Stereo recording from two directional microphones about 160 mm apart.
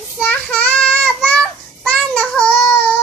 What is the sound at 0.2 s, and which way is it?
Child singing, 10° left (ahead or behind).